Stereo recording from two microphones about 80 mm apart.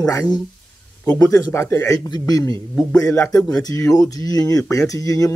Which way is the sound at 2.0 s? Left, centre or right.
Left.